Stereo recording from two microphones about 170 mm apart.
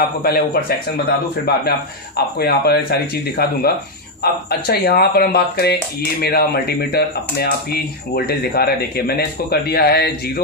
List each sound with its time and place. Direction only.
0.0 s a man's voice: 60° left (ahead or behind)
2.1 s speech: 65° left (ahead or behind)